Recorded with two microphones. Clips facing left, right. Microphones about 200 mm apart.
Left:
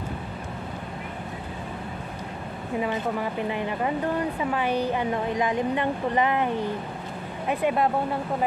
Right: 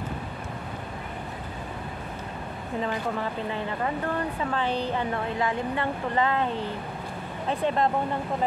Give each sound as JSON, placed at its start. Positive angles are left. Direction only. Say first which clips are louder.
{"t": 2.8, "sound": "a woman's voice", "louder": "left 2 dB", "side_deg": 15}